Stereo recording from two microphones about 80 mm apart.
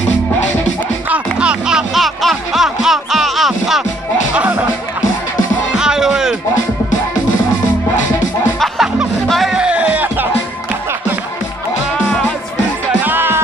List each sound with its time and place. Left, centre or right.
1.4 s music: centre
4.4 s music: centre
5.8 s music: centre
8.5 s music: centre
9.6 s a sound: centre
13.0 s music: right